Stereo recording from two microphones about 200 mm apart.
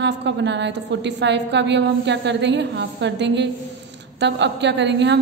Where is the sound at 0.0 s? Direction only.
60° right (ahead or behind).